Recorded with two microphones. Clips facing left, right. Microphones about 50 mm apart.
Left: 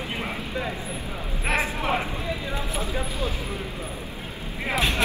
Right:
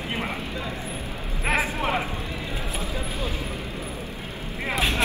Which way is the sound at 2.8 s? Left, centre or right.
Left.